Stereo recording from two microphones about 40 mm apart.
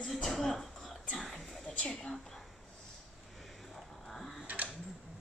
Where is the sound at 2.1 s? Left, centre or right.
Centre.